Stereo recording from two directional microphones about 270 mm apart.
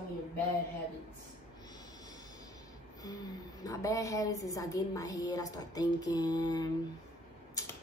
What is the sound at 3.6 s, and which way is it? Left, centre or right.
A woman's voice, centre.